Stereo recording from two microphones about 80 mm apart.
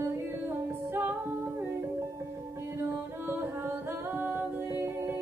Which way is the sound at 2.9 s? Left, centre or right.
Right.